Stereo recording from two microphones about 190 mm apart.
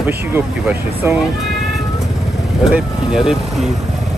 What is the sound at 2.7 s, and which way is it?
Speech, centre (ahead or behind).